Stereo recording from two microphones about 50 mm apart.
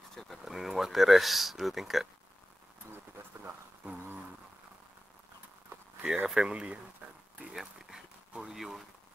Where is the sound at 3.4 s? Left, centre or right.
Right.